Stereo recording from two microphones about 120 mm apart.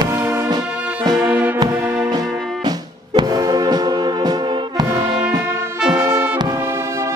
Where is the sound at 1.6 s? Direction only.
25° right (ahead or behind).